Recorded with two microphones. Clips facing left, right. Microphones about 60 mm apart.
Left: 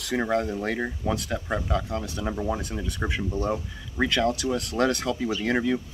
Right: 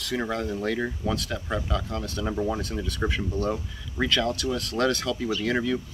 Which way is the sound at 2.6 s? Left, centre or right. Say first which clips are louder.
Right 2 dB; centre.